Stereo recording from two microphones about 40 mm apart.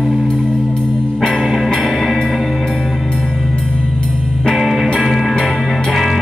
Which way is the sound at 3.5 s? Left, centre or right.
Left.